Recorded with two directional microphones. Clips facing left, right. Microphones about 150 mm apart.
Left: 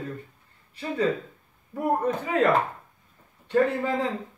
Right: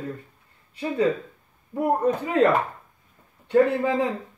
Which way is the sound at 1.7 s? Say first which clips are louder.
Right 3 dB; 20° right (ahead or behind).